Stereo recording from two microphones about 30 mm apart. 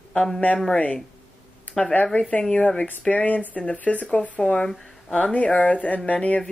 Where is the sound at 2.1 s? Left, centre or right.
Left.